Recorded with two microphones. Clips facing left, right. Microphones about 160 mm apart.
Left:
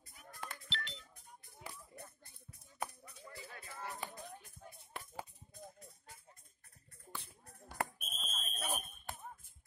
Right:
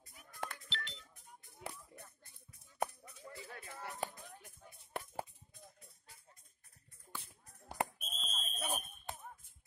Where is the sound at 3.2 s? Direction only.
25° right (ahead or behind).